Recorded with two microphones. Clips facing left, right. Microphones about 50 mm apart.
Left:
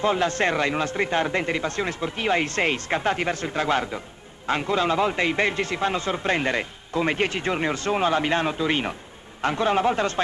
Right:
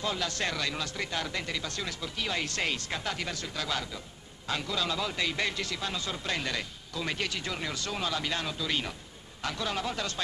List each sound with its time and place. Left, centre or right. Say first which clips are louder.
0.0 s a man's voice: left 10 dB; left